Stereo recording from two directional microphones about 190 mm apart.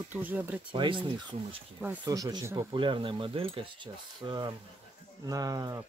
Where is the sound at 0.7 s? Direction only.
25° right (ahead or behind).